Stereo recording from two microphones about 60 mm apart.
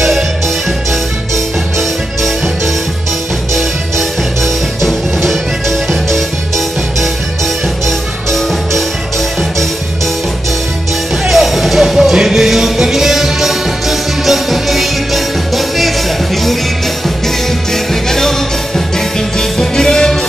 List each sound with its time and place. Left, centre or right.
1.3 s music: centre
4.8 s music: centre
7.8 s music: centre
11.2 s music: centre
18.9 s music: centre